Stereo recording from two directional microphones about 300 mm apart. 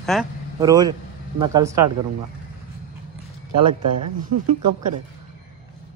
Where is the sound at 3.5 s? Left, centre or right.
Right.